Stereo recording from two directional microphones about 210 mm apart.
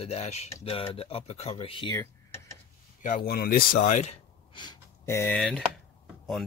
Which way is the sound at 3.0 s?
40° left (ahead or behind).